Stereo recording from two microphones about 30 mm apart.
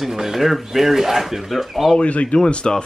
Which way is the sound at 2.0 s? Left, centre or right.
Left.